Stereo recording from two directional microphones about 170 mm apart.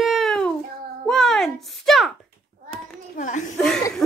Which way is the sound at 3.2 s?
45° left (ahead or behind).